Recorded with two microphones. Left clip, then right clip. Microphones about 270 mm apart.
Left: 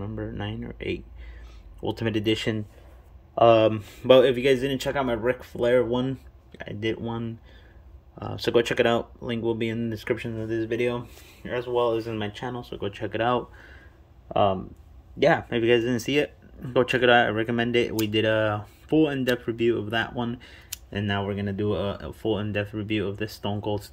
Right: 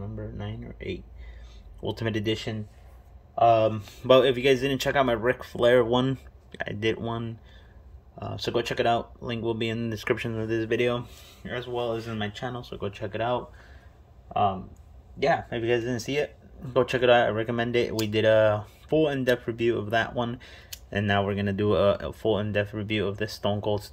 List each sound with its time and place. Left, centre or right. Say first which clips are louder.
0.0 s speech: left 5 dB; centre
14.3 s speech: left 3 dB; centre